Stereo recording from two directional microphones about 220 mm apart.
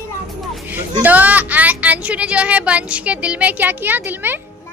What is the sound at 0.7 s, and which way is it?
Speech, 10° right (ahead or behind).